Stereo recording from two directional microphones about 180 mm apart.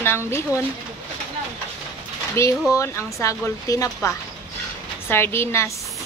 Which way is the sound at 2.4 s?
15° left (ahead or behind).